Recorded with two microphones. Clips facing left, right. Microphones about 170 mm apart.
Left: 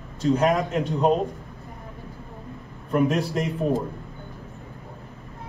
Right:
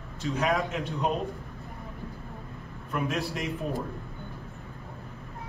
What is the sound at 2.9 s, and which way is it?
Speech, 40° left (ahead or behind).